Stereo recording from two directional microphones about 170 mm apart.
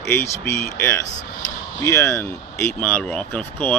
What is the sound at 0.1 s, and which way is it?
Speech, 15° left (ahead or behind).